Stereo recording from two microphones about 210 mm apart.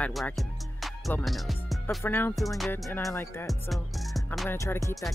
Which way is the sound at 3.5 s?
Centre (ahead or behind).